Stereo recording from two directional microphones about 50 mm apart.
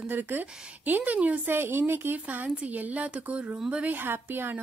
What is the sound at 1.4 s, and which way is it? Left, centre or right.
Speech, right.